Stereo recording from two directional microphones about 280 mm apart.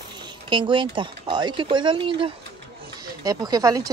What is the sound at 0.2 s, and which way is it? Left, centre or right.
Speech, centre.